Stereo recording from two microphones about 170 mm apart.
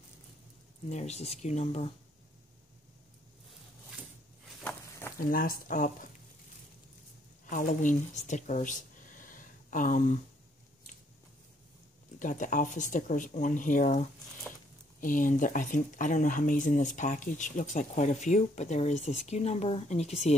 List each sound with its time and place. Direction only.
0.8 s speech: 40° left (ahead or behind)
5.3 s speech: 55° left (ahead or behind)
7.4 s speech: 50° left (ahead or behind)
12.2 s speech: 50° left (ahead or behind)